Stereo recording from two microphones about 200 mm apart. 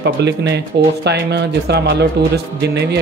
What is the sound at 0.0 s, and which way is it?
Speech, 60° right (ahead or behind).